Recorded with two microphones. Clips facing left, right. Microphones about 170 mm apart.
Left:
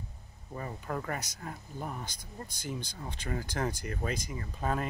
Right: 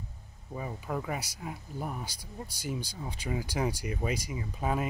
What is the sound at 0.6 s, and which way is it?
Speech, 5° right (ahead or behind).